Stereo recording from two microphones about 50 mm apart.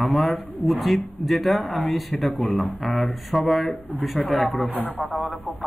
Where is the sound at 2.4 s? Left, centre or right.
Left.